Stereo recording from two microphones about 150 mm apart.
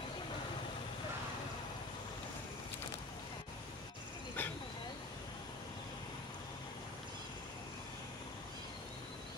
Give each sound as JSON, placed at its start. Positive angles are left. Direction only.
{"t": 4.4, "sound": "vehicle", "side_deg": 15}